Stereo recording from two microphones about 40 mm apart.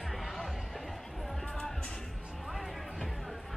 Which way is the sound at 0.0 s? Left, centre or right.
Centre.